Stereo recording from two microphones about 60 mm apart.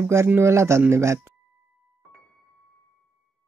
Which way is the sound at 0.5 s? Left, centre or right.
Right.